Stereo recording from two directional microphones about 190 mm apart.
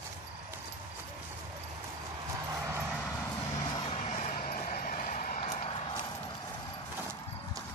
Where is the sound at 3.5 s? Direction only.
35° left (ahead or behind).